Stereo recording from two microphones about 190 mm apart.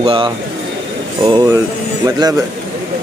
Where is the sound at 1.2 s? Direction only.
20° right (ahead or behind).